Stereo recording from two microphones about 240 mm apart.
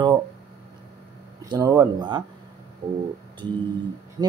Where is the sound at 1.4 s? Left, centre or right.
Centre.